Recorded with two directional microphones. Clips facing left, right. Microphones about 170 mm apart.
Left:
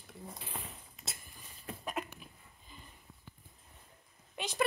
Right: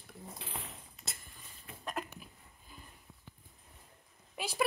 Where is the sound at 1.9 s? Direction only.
Centre (ahead or behind).